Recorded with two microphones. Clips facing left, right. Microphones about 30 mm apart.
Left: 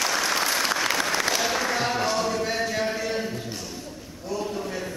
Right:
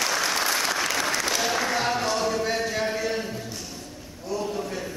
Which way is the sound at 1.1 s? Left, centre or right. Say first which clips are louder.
Left 1 dB; centre.